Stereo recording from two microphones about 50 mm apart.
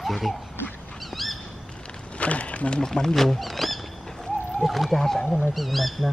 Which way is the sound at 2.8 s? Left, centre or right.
Centre.